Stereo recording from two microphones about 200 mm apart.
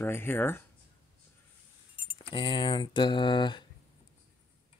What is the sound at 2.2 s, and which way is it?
Speech, 25° left (ahead or behind).